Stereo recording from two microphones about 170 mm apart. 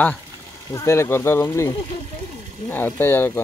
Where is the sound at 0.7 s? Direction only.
15° left (ahead or behind).